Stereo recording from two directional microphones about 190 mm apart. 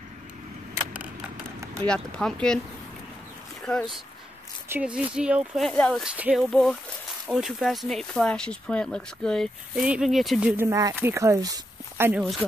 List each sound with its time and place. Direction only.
1.9 s speech: 5° left (ahead or behind)
4.6 s speech: 5° right (ahead or behind)
10.5 s speech: 15° right (ahead or behind)
12.1 s speech: centre (ahead or behind)